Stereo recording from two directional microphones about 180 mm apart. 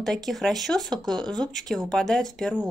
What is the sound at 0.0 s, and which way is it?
A woman's voice, centre (ahead or behind).